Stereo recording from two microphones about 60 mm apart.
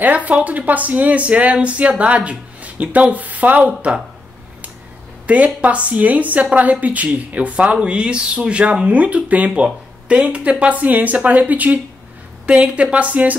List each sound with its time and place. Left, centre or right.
0.0 s a woman's voice: right
5.2 s a woman's voice: right